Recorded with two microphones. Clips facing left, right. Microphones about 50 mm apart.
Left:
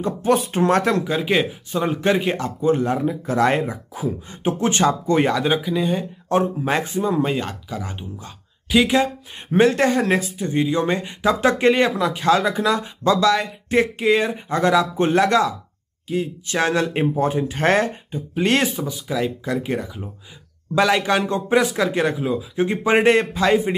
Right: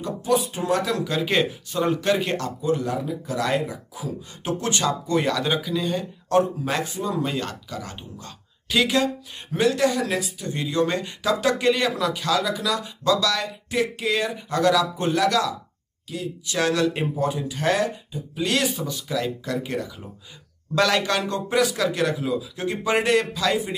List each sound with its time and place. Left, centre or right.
0.3 s speech: left
1.0 s speech: centre
2.6 s speech: left
5.3 s speech: left
9.5 s speech: left
10.5 s speech: left
18.8 s speech: centre; by 23.7 s left